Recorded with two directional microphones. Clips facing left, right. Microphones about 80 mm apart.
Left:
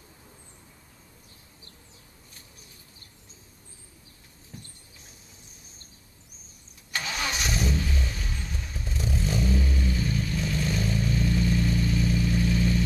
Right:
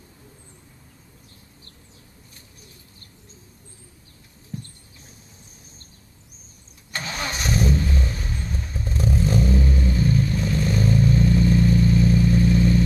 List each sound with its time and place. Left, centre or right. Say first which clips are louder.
6.9 s engine starting: right 1 dB; right
8.4 s vehicle: right 6 dB; right